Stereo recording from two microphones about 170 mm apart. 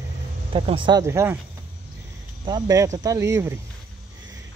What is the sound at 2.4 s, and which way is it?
Speech, 20° right (ahead or behind).